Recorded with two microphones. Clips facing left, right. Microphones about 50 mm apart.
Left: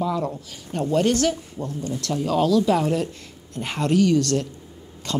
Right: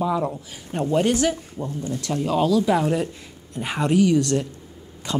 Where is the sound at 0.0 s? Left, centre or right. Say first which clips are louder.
Right 2 dB; centre.